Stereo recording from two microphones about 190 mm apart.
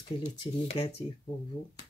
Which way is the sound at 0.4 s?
30° left (ahead or behind).